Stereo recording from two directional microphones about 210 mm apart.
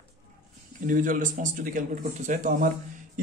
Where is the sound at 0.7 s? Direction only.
40° right (ahead or behind).